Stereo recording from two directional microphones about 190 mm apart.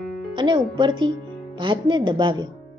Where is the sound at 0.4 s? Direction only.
25° right (ahead or behind).